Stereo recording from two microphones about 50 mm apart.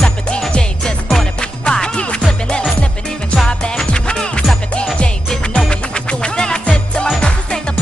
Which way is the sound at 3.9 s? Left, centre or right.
Centre.